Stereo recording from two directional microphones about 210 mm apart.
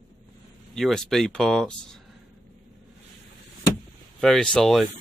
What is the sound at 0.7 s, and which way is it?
Speech, centre (ahead or behind).